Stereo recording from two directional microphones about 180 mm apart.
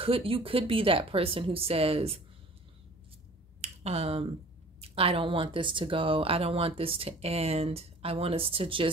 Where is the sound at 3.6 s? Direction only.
35° right (ahead or behind).